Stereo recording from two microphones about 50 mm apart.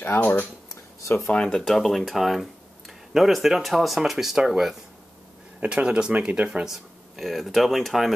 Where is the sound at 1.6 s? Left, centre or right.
Centre.